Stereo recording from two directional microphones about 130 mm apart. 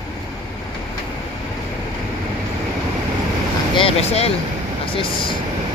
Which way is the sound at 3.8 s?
50° left (ahead or behind).